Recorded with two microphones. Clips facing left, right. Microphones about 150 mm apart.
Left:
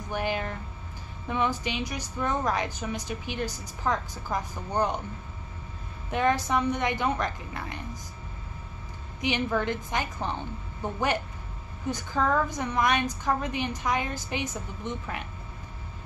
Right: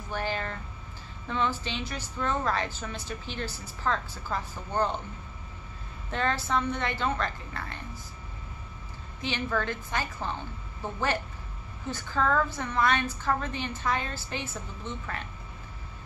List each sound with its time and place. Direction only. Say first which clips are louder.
0.1 s a sound: left 2 dB; 15° left (ahead or behind)
1.2 s a woman's voice: left 2 dB; 15° left (ahead or behind)
6.0 s a woman's voice: left 4 dB; 15° left (ahead or behind)
9.2 s a woman's voice: left 3 dB; 15° left (ahead or behind)